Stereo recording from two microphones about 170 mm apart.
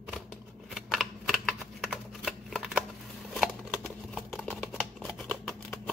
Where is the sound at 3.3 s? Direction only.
Centre (ahead or behind).